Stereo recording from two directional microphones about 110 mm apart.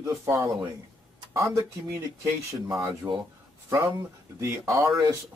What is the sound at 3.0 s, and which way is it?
Speech, 25° right (ahead or behind).